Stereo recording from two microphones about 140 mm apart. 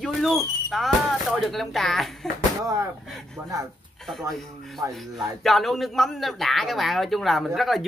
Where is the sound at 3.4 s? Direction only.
15° right (ahead or behind).